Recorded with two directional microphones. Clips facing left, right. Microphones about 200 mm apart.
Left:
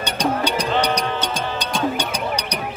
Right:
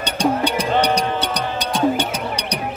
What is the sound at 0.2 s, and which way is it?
Music, 30° right (ahead or behind).